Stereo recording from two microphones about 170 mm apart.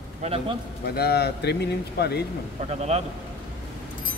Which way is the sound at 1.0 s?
70° left (ahead or behind).